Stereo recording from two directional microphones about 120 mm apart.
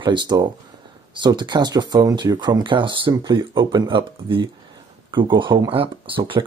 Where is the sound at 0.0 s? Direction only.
40° right (ahead or behind).